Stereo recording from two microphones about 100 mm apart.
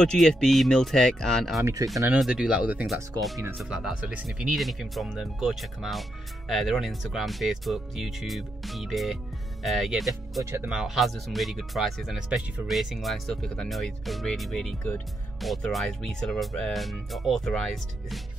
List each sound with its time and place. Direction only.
0.0 s speech: 5° left (ahead or behind)
1.6 s speech: 35° right (ahead or behind)
2.1 s speech: 5° right (ahead or behind)
2.9 s speech: centre (ahead or behind)
10.4 s speech: 25° right (ahead or behind)
10.7 s speech: 5° right (ahead or behind)